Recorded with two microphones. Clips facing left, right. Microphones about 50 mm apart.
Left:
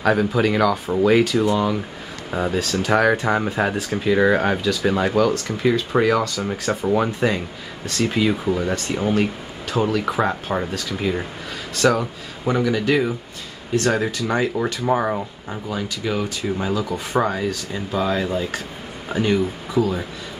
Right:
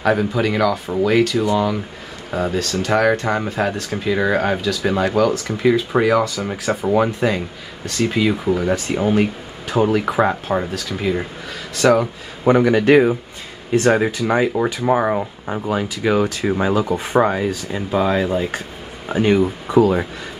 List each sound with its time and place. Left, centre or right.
0.0 s speech: centre
12.4 s a man's voice: right
13.7 s speech: right
19.7 s a man's voice: right